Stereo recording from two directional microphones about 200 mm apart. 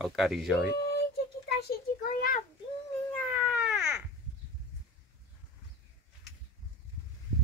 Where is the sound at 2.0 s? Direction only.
45° left (ahead or behind).